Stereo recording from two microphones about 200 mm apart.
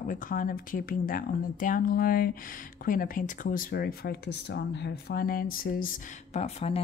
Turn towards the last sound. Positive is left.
turn(degrees=30)  # may be behind; listen again after turning